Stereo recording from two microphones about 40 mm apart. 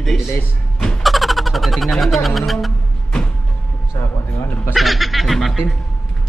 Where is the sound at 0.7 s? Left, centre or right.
Centre.